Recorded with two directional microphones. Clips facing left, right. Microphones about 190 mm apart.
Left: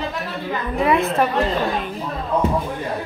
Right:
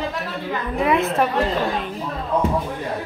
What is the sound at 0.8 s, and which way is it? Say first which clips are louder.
Speech: left 1 dB; centre (ahead or behind).